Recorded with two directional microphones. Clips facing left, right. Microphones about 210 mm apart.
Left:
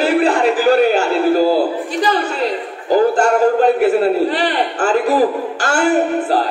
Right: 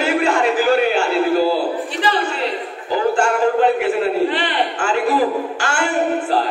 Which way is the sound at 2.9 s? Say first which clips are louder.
Left 5 dB; 40° left (ahead or behind).